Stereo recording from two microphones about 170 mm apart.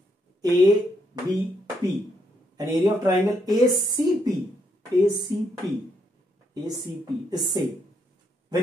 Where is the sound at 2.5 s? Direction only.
20° right (ahead or behind).